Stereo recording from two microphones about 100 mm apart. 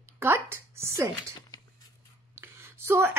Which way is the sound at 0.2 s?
25° right (ahead or behind).